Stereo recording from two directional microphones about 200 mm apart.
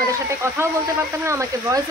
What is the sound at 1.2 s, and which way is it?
Speech, 15° right (ahead or behind).